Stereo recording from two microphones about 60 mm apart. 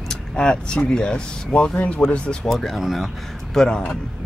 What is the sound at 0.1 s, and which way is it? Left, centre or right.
Speech, centre.